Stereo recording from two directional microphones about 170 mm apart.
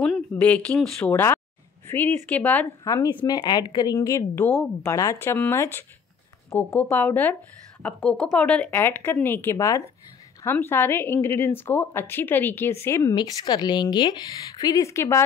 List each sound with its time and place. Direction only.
0.0 s a woman's voice: 5° left (ahead or behind)